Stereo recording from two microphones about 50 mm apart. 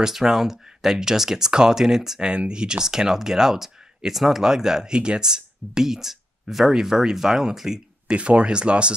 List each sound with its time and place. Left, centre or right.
0.0 s speech: centre
8.2 s speech: right